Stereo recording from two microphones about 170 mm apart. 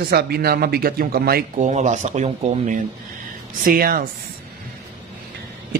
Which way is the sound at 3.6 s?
55° right (ahead or behind).